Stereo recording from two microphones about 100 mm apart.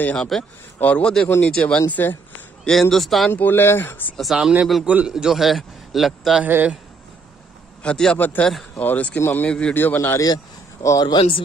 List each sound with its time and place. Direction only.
0.0 s speech: 10° left (ahead or behind)
2.6 s a man's voice: 5° left (ahead or behind)
3.3 s speech: 20° left (ahead or behind)
4.2 s a man's voice: 5° right (ahead or behind)
6.4 s speech: 15° right (ahead or behind)
7.8 s speech: 10° left (ahead or behind)
9.5 s speech: 5° left (ahead or behind)
9.8 s speech: 20° left (ahead or behind)
10.2 s speech: 35° left (ahead or behind)